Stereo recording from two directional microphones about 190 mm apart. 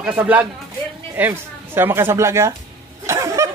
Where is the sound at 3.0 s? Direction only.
15° right (ahead or behind).